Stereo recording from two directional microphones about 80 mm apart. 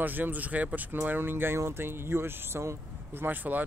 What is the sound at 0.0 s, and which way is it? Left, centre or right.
Speech, right.